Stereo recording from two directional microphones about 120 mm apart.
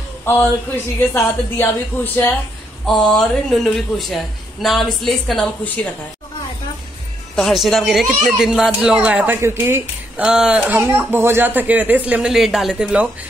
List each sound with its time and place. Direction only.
0.2 s a woman's voice: 20° left (ahead or behind)
2.9 s speech: 5° left (ahead or behind)
7.3 s speech: centre (ahead or behind); by 10.2 s 20° right (ahead or behind)
10.2 s speech: 5° right (ahead or behind)